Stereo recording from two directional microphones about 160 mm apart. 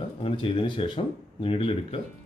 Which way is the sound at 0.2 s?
35° left (ahead or behind).